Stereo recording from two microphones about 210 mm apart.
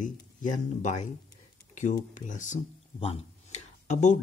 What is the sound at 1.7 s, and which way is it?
Speech, 35° left (ahead or behind).